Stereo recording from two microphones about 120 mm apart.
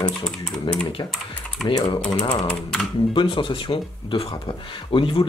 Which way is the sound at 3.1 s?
45° left (ahead or behind).